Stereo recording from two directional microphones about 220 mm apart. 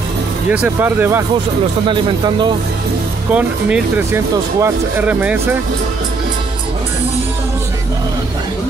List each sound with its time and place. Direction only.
0.5 s speech: 5° right (ahead or behind)
1.9 s speech: 20° right (ahead or behind)
3.3 s speech: 5° right (ahead or behind)